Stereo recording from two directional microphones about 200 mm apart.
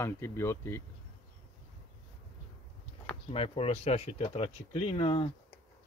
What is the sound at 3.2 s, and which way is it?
Speech, 30° left (ahead or behind).